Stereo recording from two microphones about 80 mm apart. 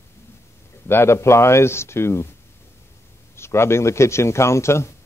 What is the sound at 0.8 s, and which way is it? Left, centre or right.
A man's voice, left.